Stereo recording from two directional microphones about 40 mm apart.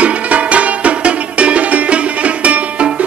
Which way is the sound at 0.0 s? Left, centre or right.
Right.